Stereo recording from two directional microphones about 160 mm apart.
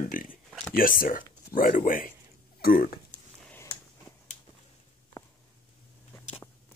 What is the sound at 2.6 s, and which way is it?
Speech, 70° left (ahead or behind).